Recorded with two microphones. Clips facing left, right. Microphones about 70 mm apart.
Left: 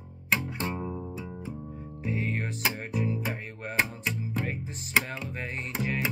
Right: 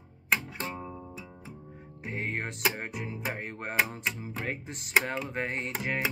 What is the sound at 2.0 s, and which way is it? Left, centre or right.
Music, right.